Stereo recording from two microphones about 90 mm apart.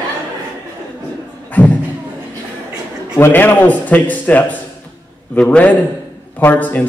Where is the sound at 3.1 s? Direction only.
25° left (ahead or behind).